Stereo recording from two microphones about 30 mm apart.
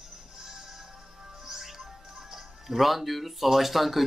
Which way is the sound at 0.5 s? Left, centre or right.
Centre.